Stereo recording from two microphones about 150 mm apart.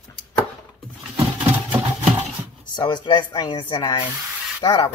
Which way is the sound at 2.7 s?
30° left (ahead or behind).